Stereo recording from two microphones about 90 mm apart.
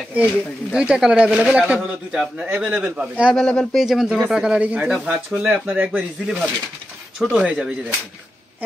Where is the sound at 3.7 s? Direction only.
5° right (ahead or behind).